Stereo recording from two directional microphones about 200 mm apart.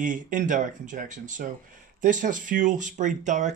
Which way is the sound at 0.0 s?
40° right (ahead or behind).